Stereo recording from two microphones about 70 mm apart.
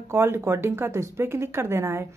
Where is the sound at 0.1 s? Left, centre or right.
Right.